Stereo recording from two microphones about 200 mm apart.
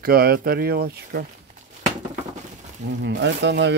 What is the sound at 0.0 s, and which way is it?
Speech, 45° right (ahead or behind).